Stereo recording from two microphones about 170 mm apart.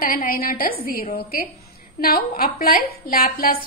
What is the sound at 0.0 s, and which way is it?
A woman's voice, 55° left (ahead or behind).